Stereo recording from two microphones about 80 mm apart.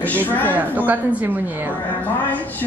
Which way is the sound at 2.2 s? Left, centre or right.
Left.